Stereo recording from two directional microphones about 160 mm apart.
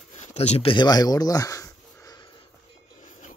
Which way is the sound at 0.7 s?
25° left (ahead or behind).